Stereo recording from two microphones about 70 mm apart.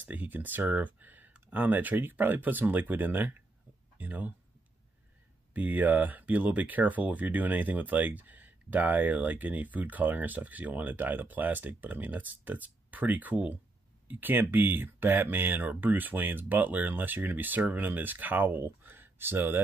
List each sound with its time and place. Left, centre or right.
0.0 s speech: right
5.5 s speech: right